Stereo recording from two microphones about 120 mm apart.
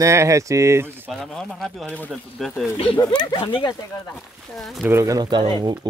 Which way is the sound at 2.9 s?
35° left (ahead or behind).